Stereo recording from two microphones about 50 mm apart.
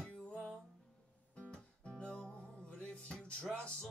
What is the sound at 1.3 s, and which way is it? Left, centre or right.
Music, centre.